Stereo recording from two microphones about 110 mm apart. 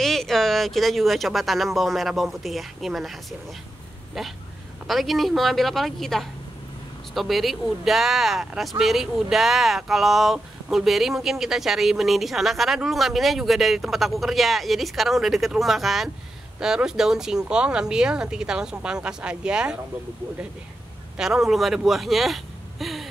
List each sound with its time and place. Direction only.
0.0 s speech: centre (ahead or behind)
4.8 s speech: centre (ahead or behind)
21.2 s speech: 5° right (ahead or behind)